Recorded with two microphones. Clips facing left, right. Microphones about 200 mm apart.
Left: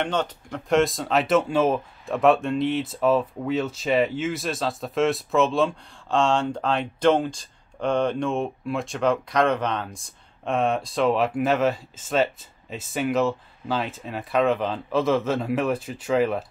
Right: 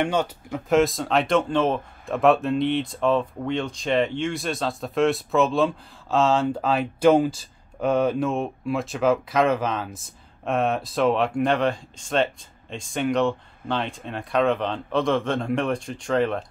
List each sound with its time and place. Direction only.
0.0 s speech: 10° right (ahead or behind)